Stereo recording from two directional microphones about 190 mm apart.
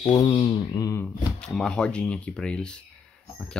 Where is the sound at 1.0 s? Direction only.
5° left (ahead or behind).